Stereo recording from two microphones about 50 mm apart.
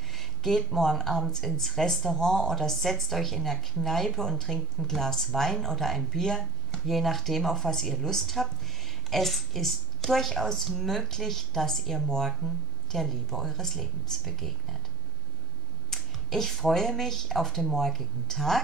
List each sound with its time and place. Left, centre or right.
0.1 s speech: centre
15.9 s speech: centre